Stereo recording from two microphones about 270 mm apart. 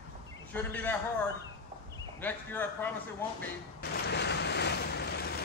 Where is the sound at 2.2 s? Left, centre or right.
Centre.